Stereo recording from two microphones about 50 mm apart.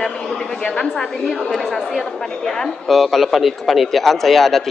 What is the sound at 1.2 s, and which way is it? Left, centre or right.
A man's voice, centre.